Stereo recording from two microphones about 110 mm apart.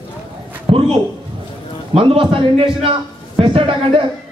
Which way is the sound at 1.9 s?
55° right (ahead or behind).